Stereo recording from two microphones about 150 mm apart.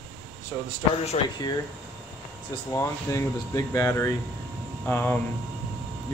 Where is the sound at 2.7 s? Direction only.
20° left (ahead or behind).